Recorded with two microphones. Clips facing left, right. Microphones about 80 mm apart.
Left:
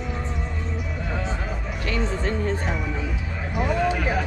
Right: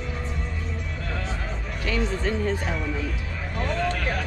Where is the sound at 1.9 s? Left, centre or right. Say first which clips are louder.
Even; left.